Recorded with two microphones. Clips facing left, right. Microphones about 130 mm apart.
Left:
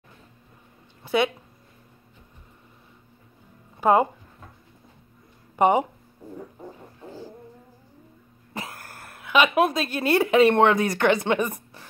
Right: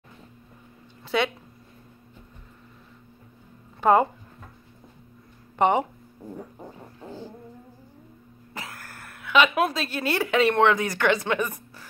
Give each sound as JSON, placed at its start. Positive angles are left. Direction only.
{"t": 1.0, "sound": "speech", "side_deg": 15}
{"t": 3.8, "sound": "speech", "side_deg": 15}
{"t": 5.6, "sound": "speech", "side_deg": 10}
{"t": 8.9, "sound": "a sound", "side_deg": 35}
{"t": 9.2, "sound": "speech", "side_deg": 20}